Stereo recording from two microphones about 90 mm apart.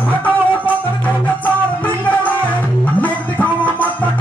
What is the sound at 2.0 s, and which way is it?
Music, 20° left (ahead or behind).